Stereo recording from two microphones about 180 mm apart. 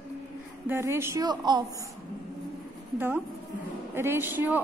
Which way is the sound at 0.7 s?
15° right (ahead or behind).